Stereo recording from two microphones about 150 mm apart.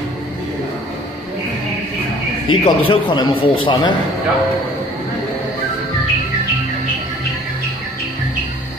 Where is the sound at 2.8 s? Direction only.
30° left (ahead or behind).